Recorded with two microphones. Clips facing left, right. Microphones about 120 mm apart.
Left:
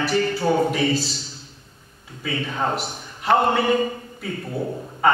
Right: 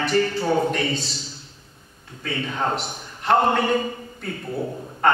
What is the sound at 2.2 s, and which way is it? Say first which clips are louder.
A man's voice: left 1 dB; 5° left (ahead or behind).